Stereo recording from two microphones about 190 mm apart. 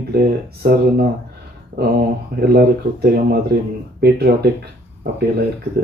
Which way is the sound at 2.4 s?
55° right (ahead or behind).